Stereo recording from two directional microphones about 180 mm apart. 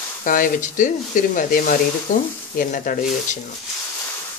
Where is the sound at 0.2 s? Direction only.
50° left (ahead or behind).